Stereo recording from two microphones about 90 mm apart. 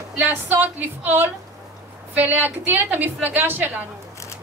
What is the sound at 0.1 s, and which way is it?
A woman's voice, 20° right (ahead or behind).